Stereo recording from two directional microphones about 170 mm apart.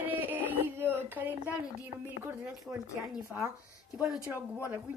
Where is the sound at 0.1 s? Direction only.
10° right (ahead or behind).